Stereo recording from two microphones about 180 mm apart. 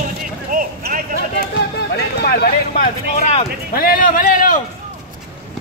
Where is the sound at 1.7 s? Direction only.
65° left (ahead or behind); by 3.5 s 40° left (ahead or behind).